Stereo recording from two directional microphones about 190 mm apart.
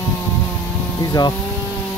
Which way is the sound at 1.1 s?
20° left (ahead or behind).